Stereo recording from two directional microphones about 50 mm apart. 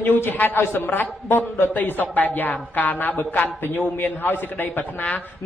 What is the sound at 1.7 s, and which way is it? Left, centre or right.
A man's voice, left.